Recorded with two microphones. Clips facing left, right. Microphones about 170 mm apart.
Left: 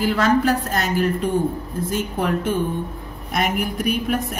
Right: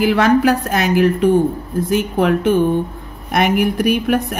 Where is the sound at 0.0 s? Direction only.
70° right (ahead or behind).